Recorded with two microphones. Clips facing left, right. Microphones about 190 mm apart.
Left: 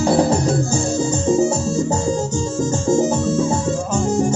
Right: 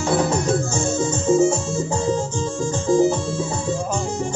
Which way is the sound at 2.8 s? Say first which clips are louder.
Right 1 dB; 45° left (ahead or behind).